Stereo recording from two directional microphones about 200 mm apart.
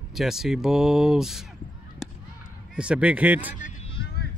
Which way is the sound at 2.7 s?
5° right (ahead or behind).